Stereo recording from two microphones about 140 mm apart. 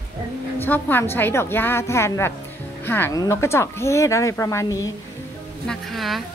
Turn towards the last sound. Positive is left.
turn(degrees=0)  # may be behind; listen again after turning